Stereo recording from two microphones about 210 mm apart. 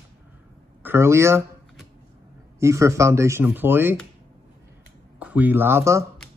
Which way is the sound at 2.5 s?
15° right (ahead or behind).